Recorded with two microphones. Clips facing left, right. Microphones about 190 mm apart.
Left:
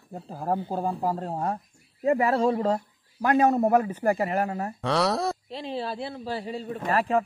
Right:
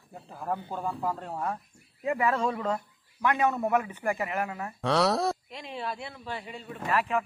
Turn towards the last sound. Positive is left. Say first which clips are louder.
# left 4 dB
turn(degrees=40)  # may be behind; listen again after turning